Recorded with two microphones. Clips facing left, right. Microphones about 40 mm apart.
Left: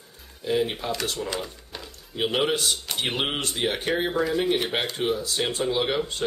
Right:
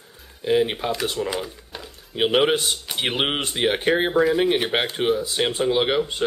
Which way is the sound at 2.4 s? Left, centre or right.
Right.